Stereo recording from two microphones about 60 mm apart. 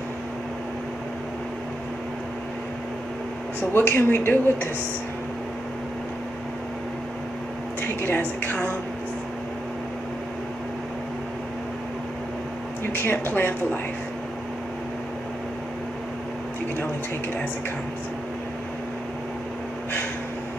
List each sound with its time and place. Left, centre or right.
3.7 s speech: left
8.2 s a woman's voice: left
12.9 s speech: left